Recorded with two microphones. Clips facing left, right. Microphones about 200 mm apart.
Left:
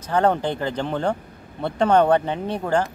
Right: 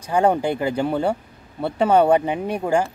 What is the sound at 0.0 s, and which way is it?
Speech, 10° right (ahead or behind).